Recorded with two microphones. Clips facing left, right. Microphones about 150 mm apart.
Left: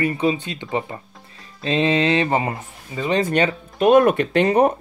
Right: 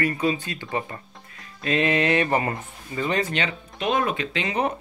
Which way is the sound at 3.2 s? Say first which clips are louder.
Left 8 dB; 45° left (ahead or behind).